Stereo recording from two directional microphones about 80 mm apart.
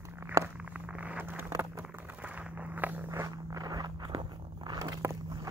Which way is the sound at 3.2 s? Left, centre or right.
Right.